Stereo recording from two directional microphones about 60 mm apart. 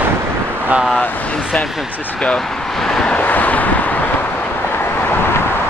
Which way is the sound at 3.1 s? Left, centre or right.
Left.